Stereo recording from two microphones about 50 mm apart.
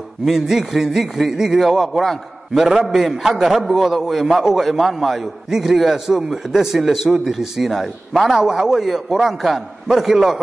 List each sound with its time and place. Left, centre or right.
0.2 s a man's voice: centre